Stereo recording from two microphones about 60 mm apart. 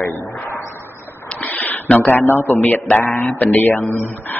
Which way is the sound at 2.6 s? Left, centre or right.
Left.